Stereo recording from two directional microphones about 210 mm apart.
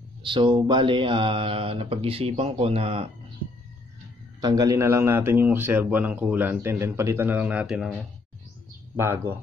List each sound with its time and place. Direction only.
0.2 s speech: 25° right (ahead or behind)
4.4 s a man's voice: 20° right (ahead or behind)